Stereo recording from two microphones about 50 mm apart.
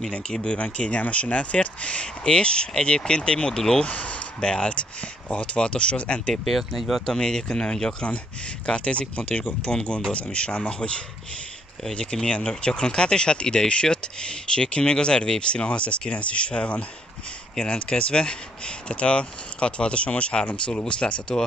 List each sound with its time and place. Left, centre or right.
0.1 s speech: centre
3.8 s speech: left
6.4 s speech: centre
7.1 s speech: centre